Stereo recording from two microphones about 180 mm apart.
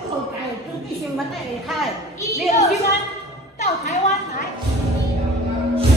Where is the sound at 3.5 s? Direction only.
40° left (ahead or behind).